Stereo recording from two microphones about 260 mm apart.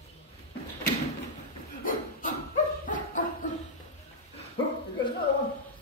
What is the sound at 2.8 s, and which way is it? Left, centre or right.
Dog, left.